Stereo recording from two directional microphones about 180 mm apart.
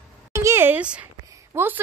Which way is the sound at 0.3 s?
15° right (ahead or behind).